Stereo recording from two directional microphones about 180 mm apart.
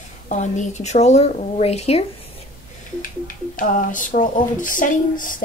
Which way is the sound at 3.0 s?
50° left (ahead or behind).